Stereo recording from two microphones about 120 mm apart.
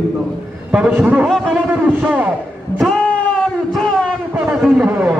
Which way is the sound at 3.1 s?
10° left (ahead or behind).